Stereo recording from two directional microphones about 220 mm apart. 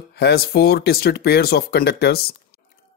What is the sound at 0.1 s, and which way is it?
Speech, 45° left (ahead or behind).